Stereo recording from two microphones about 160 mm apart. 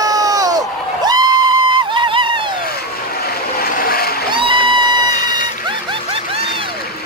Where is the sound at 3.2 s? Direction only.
70° left (ahead or behind).